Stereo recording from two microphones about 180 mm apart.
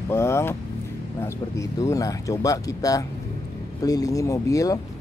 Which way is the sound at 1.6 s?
20° left (ahead or behind).